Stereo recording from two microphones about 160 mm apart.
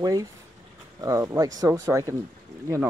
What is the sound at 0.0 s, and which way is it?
Speech, 20° right (ahead or behind).